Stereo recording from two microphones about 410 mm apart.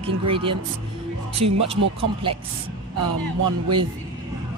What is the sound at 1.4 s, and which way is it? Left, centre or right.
Speech, right.